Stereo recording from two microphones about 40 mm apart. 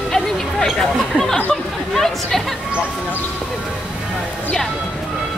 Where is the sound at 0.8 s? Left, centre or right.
Centre.